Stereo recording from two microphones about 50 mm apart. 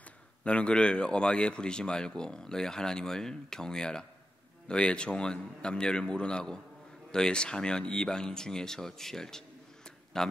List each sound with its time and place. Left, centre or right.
0.4 s a man's voice: left